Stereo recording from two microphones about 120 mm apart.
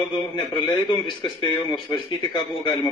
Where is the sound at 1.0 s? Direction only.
40° left (ahead or behind).